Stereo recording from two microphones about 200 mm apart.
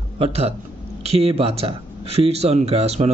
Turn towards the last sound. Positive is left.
turn(degrees=-30)  # may be behind; listen again after turning